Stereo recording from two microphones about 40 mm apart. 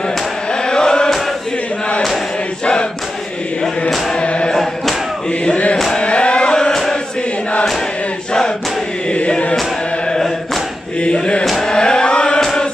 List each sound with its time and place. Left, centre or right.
0.5 s chant: centre
2.6 s chant: left
4.1 s chant: left
4.5 s chant: centre
5.4 s chant: left
6.7 s chant: centre
11.1 s chant: left
11.6 s a sound: centre